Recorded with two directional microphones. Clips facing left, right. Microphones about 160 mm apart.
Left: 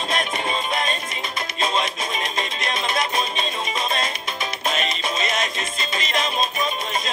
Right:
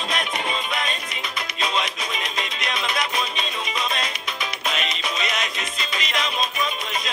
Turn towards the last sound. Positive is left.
turn(degrees=45)  # may be behind; listen again after turning